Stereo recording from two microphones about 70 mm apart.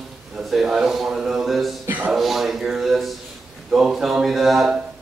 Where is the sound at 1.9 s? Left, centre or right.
Right.